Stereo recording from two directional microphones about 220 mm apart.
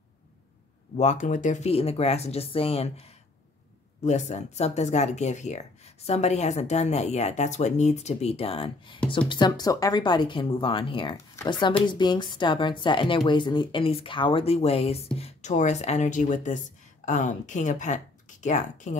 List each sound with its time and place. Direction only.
0.9 s speech: 35° left (ahead or behind)